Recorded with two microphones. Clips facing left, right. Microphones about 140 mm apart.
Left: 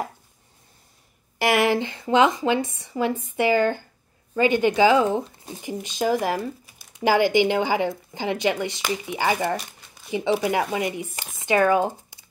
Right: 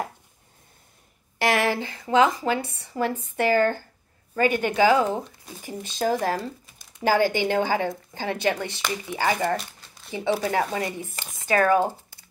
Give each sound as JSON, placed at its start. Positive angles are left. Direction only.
{"t": 1.4, "sound": "speech", "side_deg": 10}
{"t": 5.4, "sound": "speech", "side_deg": 25}
{"t": 5.7, "sound": "speech", "side_deg": 15}